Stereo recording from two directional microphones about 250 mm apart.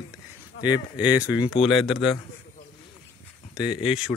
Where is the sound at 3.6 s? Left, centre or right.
Centre.